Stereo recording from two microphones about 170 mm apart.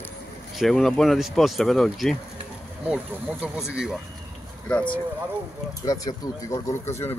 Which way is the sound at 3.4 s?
5° right (ahead or behind).